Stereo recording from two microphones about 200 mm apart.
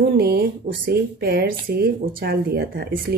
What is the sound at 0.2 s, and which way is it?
Speech, 50° right (ahead or behind).